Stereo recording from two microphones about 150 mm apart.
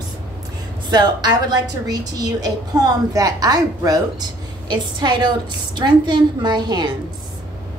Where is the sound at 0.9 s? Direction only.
30° right (ahead or behind).